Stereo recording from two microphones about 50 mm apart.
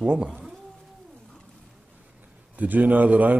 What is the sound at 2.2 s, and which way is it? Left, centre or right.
A man's voice, right.